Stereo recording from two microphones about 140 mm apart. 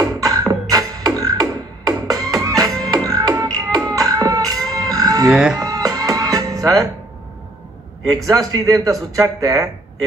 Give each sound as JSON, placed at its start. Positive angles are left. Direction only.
{"t": 0.5, "sound": "music", "side_deg": -25}
{"t": 5.3, "sound": "speech", "side_deg": -5}
{"t": 5.6, "sound": "music", "side_deg": -25}
{"t": 8.1, "sound": "speech", "side_deg": -25}